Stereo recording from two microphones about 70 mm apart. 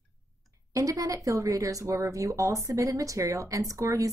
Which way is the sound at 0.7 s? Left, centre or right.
Right.